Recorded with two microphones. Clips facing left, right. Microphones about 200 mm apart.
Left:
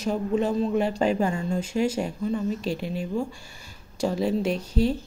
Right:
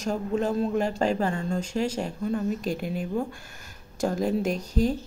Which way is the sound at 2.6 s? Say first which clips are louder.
Even; 50° right (ahead or behind).